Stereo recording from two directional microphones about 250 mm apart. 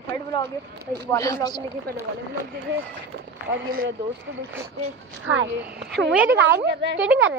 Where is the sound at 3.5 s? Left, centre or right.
Right.